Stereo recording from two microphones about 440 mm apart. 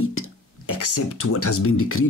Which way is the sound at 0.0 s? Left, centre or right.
Left.